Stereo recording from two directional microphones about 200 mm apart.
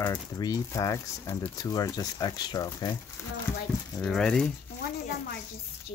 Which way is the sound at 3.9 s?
5° left (ahead or behind).